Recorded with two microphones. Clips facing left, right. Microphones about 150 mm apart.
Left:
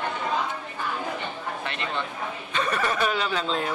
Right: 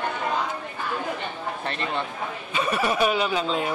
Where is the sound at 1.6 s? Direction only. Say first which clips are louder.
Right 4 dB; 40° right (ahead or behind).